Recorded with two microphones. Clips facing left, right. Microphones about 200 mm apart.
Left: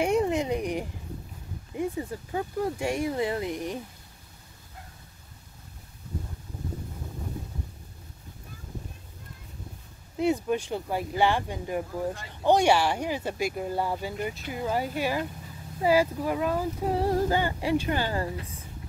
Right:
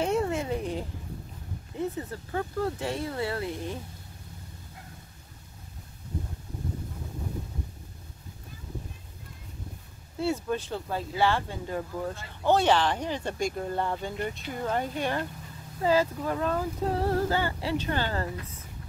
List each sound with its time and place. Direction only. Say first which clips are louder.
0.0 s a sound: left 3 dB; 15° left (ahead or behind)
1.8 s speech: left 2 dB; 15° left (ahead or behind)
10.1 s speech: left 3 dB; 15° left (ahead or behind)